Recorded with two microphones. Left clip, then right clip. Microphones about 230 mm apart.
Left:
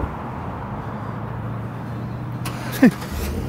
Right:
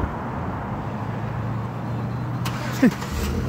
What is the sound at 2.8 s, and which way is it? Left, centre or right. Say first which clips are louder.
Speech: left 4 dB; left.